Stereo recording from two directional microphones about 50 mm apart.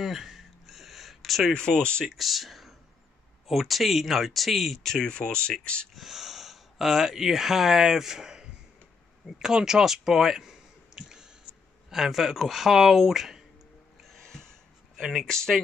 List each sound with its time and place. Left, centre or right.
0.0 s a sound: centre
1.5 s speech: centre
2.0 s speech: centre
4.9 s speech: centre
5.9 s speech: centre
11.0 s a sound: centre
11.9 s speech: centre
14.0 s music: centre
15.0 s speech: centre
15.2 s speech: centre